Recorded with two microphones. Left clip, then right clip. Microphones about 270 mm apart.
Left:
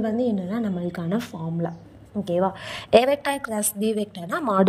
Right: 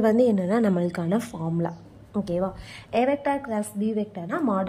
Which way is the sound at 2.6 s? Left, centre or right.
Left.